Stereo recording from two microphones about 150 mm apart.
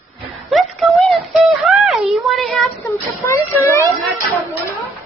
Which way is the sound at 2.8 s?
20° left (ahead or behind).